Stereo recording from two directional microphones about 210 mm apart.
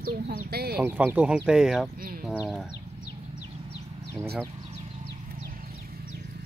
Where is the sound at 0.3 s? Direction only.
50° right (ahead or behind).